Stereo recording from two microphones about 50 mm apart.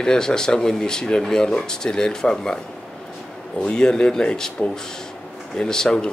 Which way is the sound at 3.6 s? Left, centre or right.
Centre.